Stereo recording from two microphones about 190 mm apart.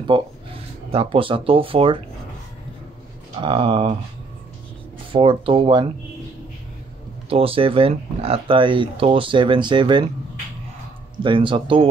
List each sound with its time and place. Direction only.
0.1 s speech: 25° right (ahead or behind)
3.3 s speech: 25° right (ahead or behind)
5.1 s speech: 25° right (ahead or behind)
7.2 s speech: 30° right (ahead or behind)
11.2 s speech: 25° right (ahead or behind)